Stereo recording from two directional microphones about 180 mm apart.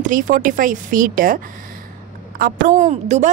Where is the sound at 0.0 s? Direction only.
50° right (ahead or behind).